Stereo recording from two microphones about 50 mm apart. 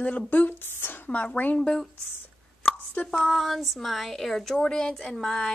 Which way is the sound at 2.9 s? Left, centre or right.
Left.